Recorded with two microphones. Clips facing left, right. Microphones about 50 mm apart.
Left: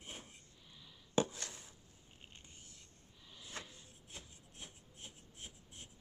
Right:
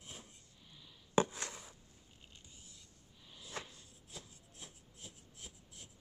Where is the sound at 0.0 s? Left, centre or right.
Left.